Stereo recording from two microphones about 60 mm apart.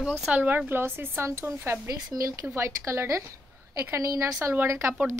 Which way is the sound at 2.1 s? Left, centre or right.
Right.